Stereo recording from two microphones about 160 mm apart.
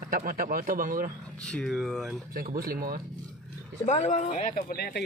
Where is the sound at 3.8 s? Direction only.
45° left (ahead or behind).